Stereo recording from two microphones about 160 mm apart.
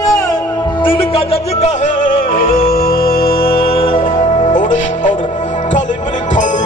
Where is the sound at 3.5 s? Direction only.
35° left (ahead or behind).